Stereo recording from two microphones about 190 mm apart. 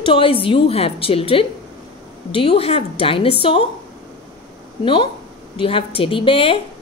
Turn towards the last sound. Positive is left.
turn(degrees=25)  # may be behind; listen again after turning